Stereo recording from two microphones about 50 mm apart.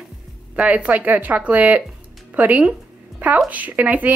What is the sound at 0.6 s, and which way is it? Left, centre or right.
Speech, right.